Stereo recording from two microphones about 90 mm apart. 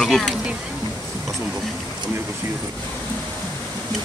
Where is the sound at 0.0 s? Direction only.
5° left (ahead or behind).